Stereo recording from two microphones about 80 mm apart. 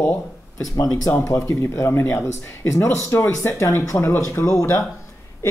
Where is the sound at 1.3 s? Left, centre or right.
Left.